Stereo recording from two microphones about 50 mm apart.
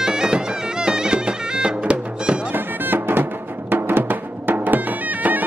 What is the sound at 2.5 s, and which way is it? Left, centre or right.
Music, right.